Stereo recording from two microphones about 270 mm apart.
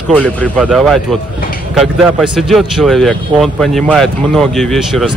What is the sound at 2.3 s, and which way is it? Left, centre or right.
Speech, centre.